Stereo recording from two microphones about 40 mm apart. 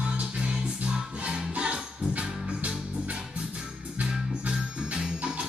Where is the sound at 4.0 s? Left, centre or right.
Right.